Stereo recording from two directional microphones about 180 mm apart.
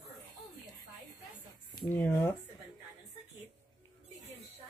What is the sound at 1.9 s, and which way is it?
Speech, 10° left (ahead or behind).